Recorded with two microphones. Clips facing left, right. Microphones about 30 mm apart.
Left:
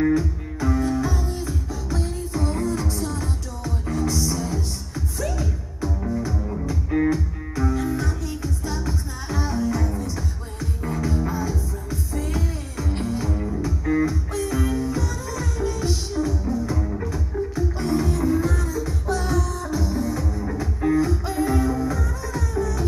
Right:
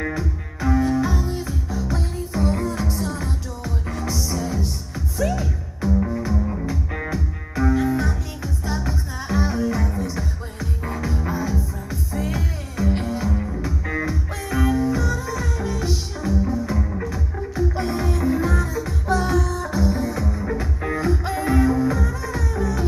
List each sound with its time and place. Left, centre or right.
0.2 s music: centre
4.1 s music: centre
13.6 s music: centre